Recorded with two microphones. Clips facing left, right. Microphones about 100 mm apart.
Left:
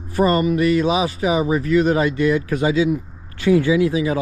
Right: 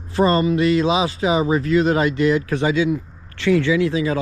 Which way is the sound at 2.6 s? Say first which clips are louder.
Left 3 dB; 30° left (ahead or behind).